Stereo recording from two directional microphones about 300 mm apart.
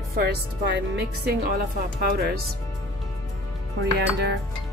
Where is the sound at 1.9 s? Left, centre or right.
Right.